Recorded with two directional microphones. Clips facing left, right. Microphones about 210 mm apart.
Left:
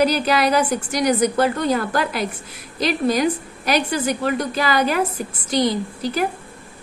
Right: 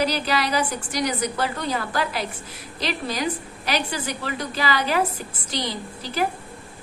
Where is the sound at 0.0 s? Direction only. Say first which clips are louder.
Left 6 dB; 50° left (ahead or behind).